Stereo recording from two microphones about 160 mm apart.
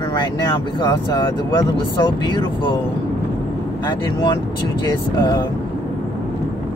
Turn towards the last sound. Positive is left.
turn(degrees=25)  # may be behind; listen again after turning